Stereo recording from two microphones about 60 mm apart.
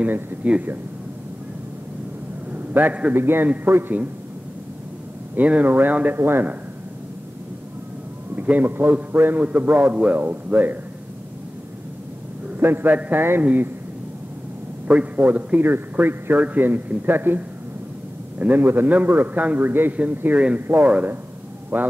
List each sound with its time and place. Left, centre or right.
0.0 s speech: right
2.5 s a man's voice: right
3.2 s a man's voice: right
5.3 s a man's voice: right
8.4 s a man's voice: right
12.5 s a man's voice: right
14.9 s a man's voice: right
18.6 s a man's voice: right
20.3 s a man's voice: right